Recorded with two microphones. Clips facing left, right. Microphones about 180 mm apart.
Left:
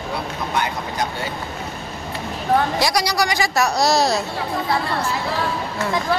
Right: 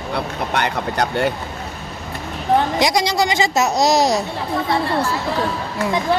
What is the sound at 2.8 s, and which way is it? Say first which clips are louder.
Speech: right 3 dB; 20° right (ahead or behind).